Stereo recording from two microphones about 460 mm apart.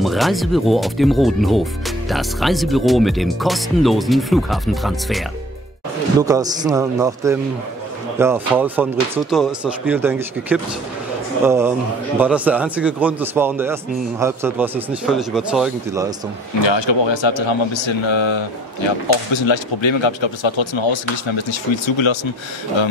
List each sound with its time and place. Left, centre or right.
0.0 s a man's voice: centre
16.6 s a man's voice: left